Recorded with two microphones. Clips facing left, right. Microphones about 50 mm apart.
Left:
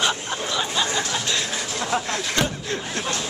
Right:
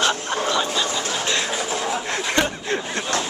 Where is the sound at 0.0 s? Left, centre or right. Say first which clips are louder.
Right 3 dB; centre.